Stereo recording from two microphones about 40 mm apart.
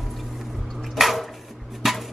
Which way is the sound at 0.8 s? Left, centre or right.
Centre.